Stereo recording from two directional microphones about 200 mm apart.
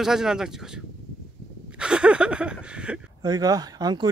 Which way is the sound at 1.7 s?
5° right (ahead or behind).